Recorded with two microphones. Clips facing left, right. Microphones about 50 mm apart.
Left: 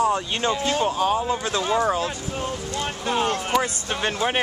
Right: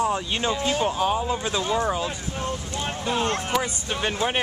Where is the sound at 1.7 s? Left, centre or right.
Centre.